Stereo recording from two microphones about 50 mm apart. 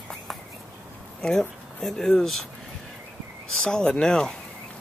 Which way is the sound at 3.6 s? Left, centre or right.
Centre.